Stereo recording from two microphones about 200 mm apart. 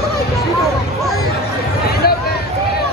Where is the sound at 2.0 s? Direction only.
50° left (ahead or behind).